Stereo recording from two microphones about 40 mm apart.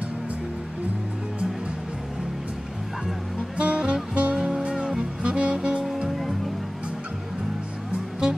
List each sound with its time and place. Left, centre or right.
3.5 s music: right
6.0 s music: centre